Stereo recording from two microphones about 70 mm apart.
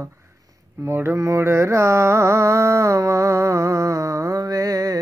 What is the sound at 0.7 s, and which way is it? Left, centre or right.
Speech, right.